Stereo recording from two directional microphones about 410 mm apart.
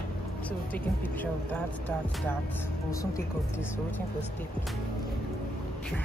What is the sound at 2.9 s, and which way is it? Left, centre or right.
A woman's voice, centre.